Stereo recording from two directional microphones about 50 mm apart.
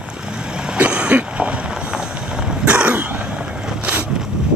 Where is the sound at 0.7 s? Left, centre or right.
Right.